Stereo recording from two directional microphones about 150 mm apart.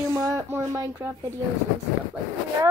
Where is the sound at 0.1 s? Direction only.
20° right (ahead or behind).